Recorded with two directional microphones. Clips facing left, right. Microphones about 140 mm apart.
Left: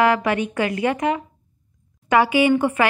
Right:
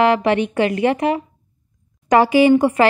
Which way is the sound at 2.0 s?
40° right (ahead or behind).